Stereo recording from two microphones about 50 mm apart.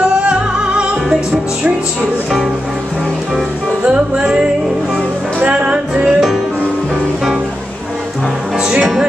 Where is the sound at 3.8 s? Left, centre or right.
Right.